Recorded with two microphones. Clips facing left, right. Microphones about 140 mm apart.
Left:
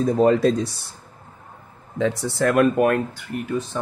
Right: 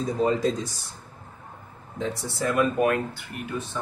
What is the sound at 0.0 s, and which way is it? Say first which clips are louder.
Speech: left 7 dB; 65° left (ahead or behind).